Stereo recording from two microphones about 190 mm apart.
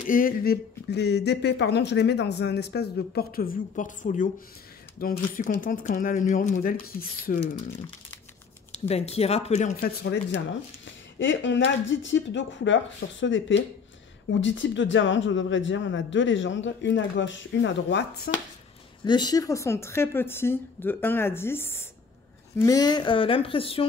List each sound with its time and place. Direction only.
0.0 s speech: 45° left (ahead or behind)
8.7 s speech: 35° left (ahead or behind)
9.8 s speech: 60° left (ahead or behind)
11.1 s a man's voice: 80° left; by 18.3 s 60° left (ahead or behind)
19.0 s a woman's voice: 20° left (ahead or behind)